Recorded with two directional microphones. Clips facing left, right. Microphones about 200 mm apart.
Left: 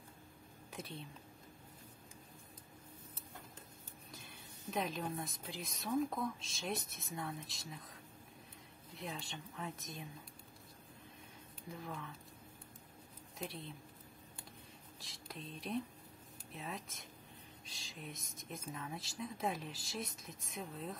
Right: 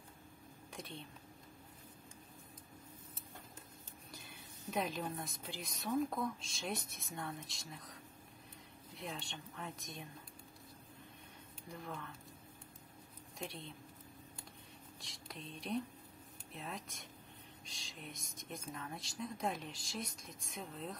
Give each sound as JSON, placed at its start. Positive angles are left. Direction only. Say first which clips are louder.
{"t": 0.7, "sound": "a sound", "louder": "left 1 dB", "side_deg": 5}
{"t": 4.1, "sound": "speech", "louder": "right 1 dB", "side_deg": 0}
{"t": 11.7, "sound": "speech", "louder": "even", "side_deg": 0}
{"t": 13.4, "sound": "speech", "louder": "left 1 dB", "side_deg": 5}
{"t": 15.2, "sound": "speech", "louder": "even", "side_deg": 0}